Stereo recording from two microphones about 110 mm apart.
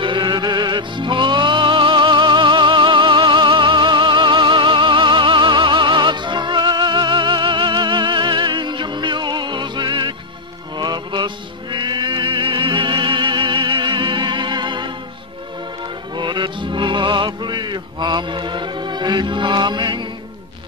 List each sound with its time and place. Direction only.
0.0 s music: 45° right (ahead or behind)
16.2 s music: 45° right (ahead or behind)